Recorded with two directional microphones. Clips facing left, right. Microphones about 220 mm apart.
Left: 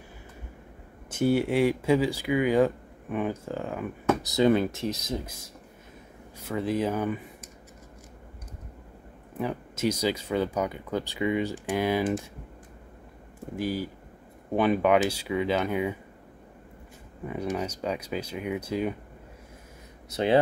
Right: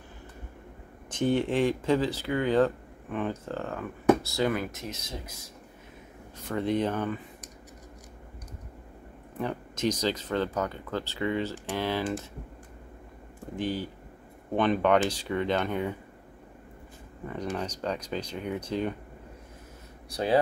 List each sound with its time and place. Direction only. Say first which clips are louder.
1.1 s speech: left 2 dB; 10° left (ahead or behind); by 5.1 s 35° left (ahead or behind)
6.4 s speech: even; 5° left (ahead or behind)
9.4 s speech: left 1 dB; 5° left (ahead or behind)
13.6 s speech: left 1 dB; 10° left (ahead or behind)
17.3 s speech: left 3 dB; 10° left (ahead or behind)
20.1 s speech: left 3 dB; 25° left (ahead or behind)